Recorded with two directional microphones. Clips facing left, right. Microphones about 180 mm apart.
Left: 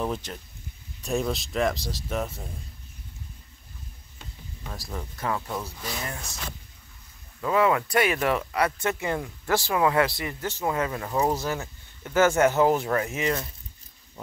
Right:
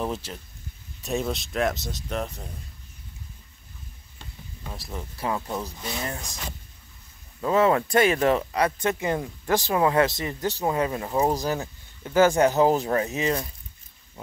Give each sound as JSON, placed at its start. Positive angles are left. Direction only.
{"t": 0.0, "sound": "speech", "side_deg": -5}
{"t": 4.6, "sound": "speech", "side_deg": -5}
{"t": 5.1, "sound": "speech", "side_deg": -25}
{"t": 7.4, "sound": "speech", "side_deg": -30}
{"t": 11.6, "sound": "a sound", "side_deg": -20}
{"t": 12.3, "sound": "speech", "side_deg": -35}